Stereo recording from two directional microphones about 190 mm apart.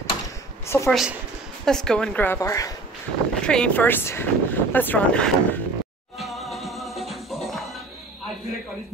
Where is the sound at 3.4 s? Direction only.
5° left (ahead or behind).